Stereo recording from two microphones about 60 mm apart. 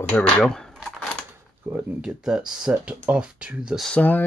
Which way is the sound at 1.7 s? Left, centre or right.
Right.